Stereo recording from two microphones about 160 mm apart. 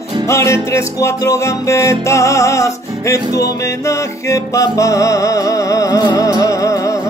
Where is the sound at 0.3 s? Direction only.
15° left (ahead or behind).